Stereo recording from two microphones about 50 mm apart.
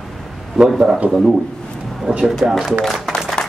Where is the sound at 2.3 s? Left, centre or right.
Centre.